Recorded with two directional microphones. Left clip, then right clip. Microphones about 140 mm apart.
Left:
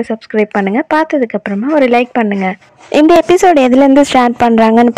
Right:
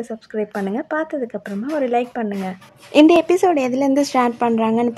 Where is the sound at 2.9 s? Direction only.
45° left (ahead or behind).